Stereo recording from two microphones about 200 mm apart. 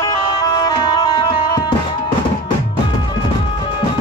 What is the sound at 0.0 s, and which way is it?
Music, 20° left (ahead or behind).